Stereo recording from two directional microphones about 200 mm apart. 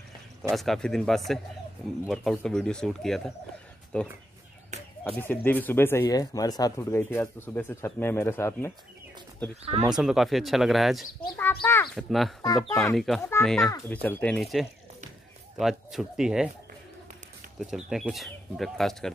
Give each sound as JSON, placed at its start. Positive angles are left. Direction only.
{"t": 0.4, "sound": "speech", "side_deg": 0}
{"t": 9.6, "sound": "speech", "side_deg": -30}
{"t": 9.9, "sound": "speech", "side_deg": 0}
{"t": 12.4, "sound": "speech", "side_deg": 20}
{"t": 12.9, "sound": "speech", "side_deg": 0}
{"t": 13.3, "sound": "speech", "side_deg": 10}
{"t": 14.0, "sound": "speech", "side_deg": 5}
{"t": 17.6, "sound": "speech", "side_deg": 0}